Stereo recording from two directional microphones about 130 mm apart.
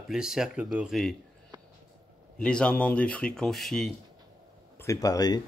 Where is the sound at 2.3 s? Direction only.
5° left (ahead or behind).